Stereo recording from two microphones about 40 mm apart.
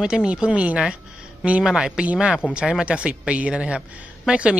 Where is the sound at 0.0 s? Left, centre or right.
Centre.